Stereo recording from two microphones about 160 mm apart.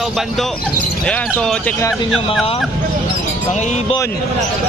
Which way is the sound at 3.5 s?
45° left (ahead or behind).